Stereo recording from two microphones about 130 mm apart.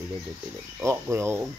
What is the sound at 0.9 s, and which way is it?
Speech, 20° right (ahead or behind).